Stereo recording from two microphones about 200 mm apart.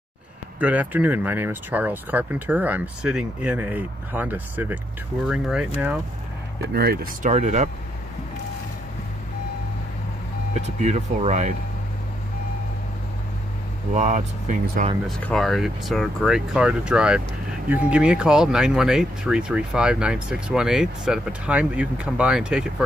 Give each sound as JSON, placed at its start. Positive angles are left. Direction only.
{"t": 0.6, "sound": "speech", "side_deg": -5}
{"t": 6.7, "sound": "speech", "side_deg": -50}
{"t": 10.5, "sound": "speech", "side_deg": -35}
{"t": 13.9, "sound": "speech", "side_deg": -35}
{"t": 15.0, "sound": "speech", "side_deg": 0}